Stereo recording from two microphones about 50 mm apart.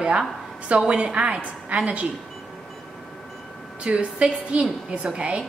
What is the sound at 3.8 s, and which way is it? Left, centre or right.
A woman's voice, right.